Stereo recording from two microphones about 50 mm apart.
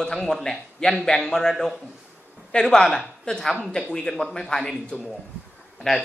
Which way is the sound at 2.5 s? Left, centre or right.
Centre.